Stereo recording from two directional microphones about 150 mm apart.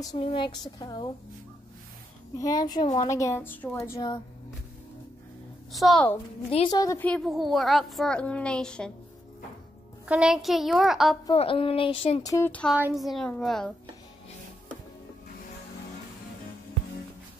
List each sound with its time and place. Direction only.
0.2 s a woman's voice: 35° left (ahead or behind)
2.3 s a woman's voice: 25° left (ahead or behind)
5.7 s a child's voice: centre (ahead or behind)
6.7 s a woman's voice: 25° left (ahead or behind)
7.0 s a child's voice: 5° left (ahead or behind)
10.0 s a child's voice: 5° right (ahead or behind)
11.3 s speech: 35° left (ahead or behind)
12.2 s a woman's voice: 25° left (ahead or behind)
12.4 s a child's voice: 10° left (ahead or behind)